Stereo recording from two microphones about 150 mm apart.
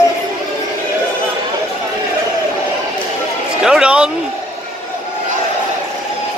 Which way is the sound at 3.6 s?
5° right (ahead or behind).